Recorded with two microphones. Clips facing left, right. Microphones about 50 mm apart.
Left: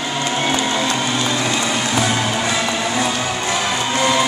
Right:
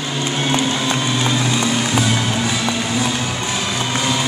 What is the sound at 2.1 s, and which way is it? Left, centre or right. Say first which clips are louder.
Music: left 1 dB; left.